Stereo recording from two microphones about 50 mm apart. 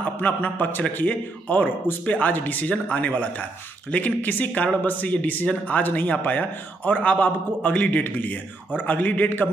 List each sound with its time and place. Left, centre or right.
0.0 s a man's voice: left